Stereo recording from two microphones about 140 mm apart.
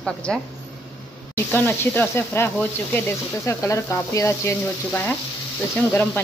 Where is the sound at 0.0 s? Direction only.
5° left (ahead or behind).